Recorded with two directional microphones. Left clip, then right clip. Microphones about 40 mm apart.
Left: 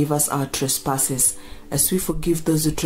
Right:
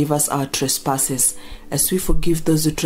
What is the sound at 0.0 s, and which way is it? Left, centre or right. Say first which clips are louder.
Speech: right 2 dB; right.